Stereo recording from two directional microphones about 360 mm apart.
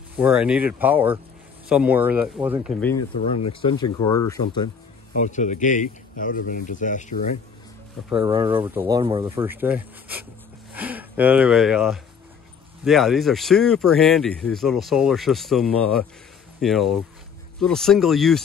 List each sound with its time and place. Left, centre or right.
0.2 s speech: centre; by 7.2 s left
8.1 s speech: centre